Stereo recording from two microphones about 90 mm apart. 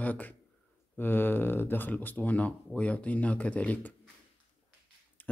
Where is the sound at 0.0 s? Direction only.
20° left (ahead or behind).